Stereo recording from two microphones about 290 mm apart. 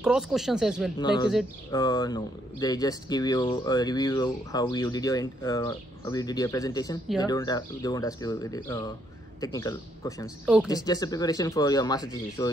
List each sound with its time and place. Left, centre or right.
0.0 s speech: centre
0.9 s speech: centre
10.4 s speech: centre
10.7 s speech: centre